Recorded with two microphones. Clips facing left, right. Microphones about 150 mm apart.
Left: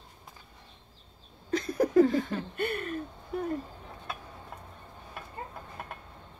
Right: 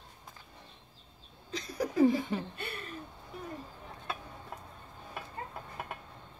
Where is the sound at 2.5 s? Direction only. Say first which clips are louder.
Left 10 dB; 55° left (ahead or behind).